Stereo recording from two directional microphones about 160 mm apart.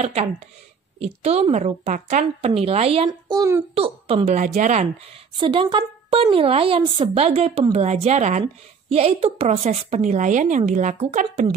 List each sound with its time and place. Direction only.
0.0 s a woman's voice: 45° right (ahead or behind)
3.1 s speech: 25° right (ahead or behind)
3.7 s a woman's voice: 35° right (ahead or behind)
4.4 s a woman's voice: 50° right (ahead or behind)
5.4 s a woman's voice: 30° right (ahead or behind); by 11.4 s 50° right (ahead or behind)